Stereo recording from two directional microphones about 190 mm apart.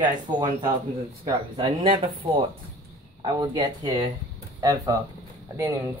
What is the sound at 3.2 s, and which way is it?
Speech, 25° right (ahead or behind).